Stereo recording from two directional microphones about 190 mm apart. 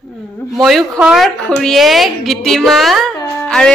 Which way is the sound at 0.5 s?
Centre (ahead or behind).